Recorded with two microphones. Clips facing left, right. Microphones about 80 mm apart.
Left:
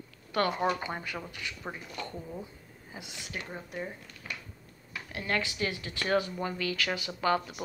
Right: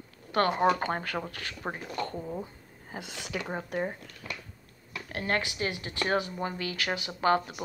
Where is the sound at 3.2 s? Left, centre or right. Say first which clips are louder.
Right 6 dB; right.